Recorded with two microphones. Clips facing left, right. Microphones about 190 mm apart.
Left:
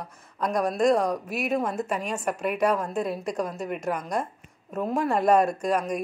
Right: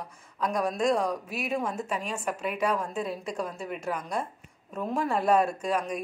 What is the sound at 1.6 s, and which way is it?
Speech, 5° left (ahead or behind).